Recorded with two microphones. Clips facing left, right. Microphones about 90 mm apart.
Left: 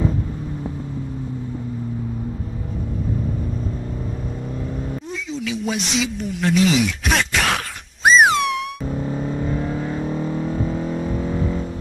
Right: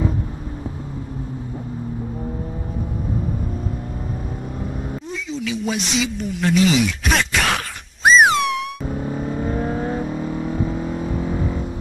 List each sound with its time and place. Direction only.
5.7 s a sound: centre (ahead or behind)
9.1 s vehicle: 15° right (ahead or behind)
9.5 s vehicle: 35° right (ahead or behind)
10.0 s vehicle: 5° right (ahead or behind)